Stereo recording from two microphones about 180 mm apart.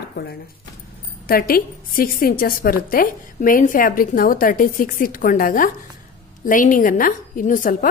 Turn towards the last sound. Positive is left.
turn(degrees=50)  # may be behind; listen again after turning